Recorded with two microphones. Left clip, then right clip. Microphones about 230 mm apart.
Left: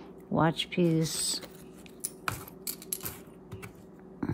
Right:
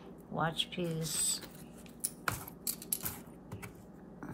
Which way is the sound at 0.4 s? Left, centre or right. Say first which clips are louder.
Left 7 dB; left.